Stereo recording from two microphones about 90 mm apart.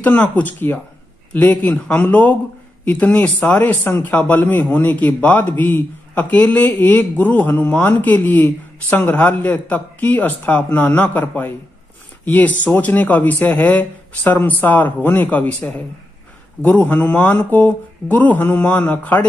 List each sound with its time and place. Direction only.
0.0 s speech: 20° left (ahead or behind)